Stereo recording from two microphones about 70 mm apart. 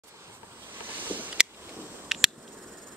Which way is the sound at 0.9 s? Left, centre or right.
Right.